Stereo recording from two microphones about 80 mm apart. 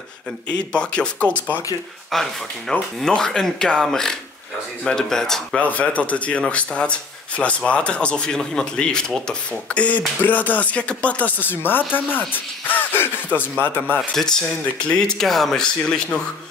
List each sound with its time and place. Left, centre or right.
0.5 s speech: centre
2.1 s speech: centre
5.6 s speech: centre
13.9 s speech: centre